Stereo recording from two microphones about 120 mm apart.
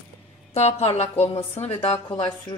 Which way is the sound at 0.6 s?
60° left (ahead or behind).